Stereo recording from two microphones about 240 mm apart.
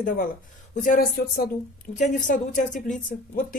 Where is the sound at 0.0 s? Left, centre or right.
Left.